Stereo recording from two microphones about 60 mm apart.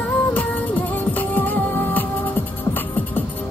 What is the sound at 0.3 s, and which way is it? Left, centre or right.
Music, left.